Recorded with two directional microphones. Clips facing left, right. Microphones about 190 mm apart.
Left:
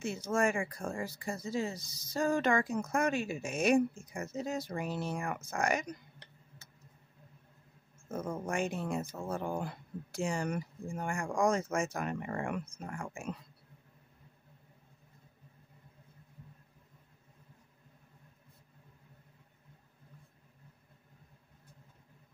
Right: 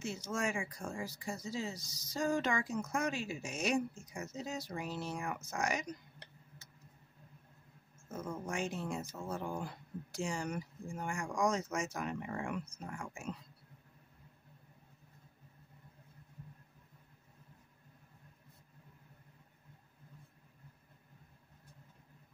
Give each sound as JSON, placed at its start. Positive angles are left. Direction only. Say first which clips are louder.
{"t": 0.0, "sound": "speech", "louder": "left 6 dB", "side_deg": 55}
{"t": 8.1, "sound": "speech", "louder": "left 5 dB", "side_deg": 55}